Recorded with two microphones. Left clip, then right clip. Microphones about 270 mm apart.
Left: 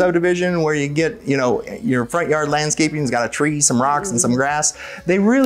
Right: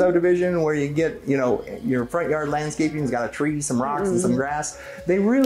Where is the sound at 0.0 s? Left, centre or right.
Left.